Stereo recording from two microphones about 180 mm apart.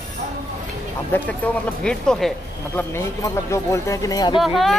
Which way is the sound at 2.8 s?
15° left (ahead or behind).